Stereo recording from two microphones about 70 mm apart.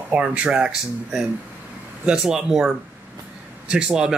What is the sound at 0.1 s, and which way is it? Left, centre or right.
Speech, centre.